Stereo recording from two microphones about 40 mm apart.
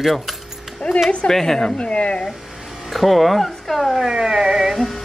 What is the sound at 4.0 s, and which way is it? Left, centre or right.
Music, centre.